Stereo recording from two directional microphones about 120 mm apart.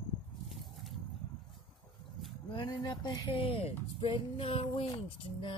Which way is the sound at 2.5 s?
40° left (ahead or behind).